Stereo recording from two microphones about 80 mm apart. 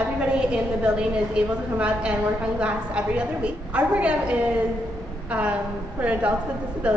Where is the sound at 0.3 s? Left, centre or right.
Centre.